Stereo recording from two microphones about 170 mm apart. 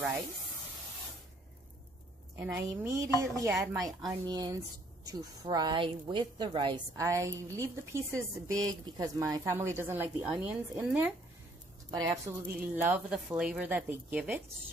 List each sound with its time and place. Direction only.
2.3 s a woman's voice: 15° right (ahead or behind)
8.5 s a woman's voice: 5° left (ahead or behind)
8.8 s speech: 20° right (ahead or behind)
11.9 s a woman's voice: 25° right (ahead or behind)
12.7 s speech: 10° right (ahead or behind)